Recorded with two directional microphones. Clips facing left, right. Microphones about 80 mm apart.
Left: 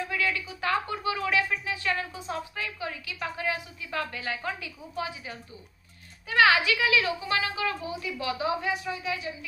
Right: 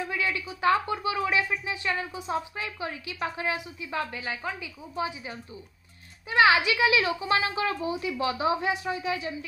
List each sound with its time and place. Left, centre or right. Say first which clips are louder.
0.1 s a woman's voice: even; centre
3.5 s a woman's voice: right 1 dB; centre
6.2 s a woman's voice: right 1 dB; centre
6.9 s speech: right 2 dB; right